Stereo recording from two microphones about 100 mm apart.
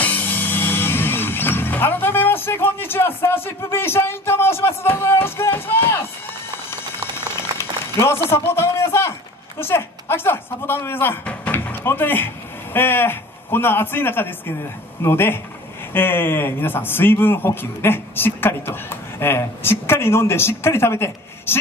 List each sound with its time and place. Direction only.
0.0 s music: 20° left (ahead or behind)
7.5 s a sound: 25° left (ahead or behind)
9.6 s a man's voice: 25° left (ahead or behind)